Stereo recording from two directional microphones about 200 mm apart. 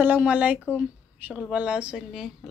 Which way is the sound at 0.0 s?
10° right (ahead or behind).